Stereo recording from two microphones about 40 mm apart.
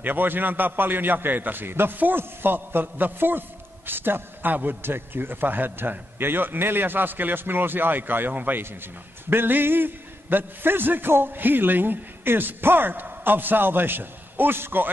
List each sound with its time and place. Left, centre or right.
0.0 s a man's voice: right
8.3 s speech: right
9.3 s a man's voice: right